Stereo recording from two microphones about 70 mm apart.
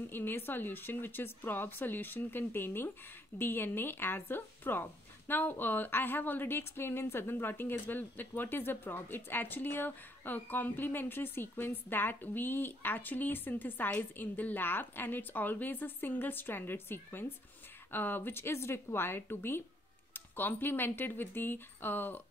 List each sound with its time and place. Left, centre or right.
0.1 s a woman's voice: left